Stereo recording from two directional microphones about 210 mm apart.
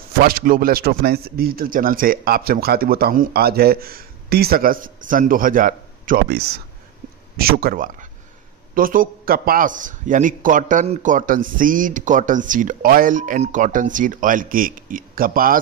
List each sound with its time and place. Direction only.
0.2 s a man's voice: 45° right (ahead or behind)